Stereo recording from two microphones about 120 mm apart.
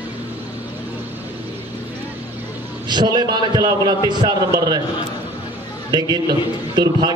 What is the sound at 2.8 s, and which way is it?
A man's voice, 35° right (ahead or behind).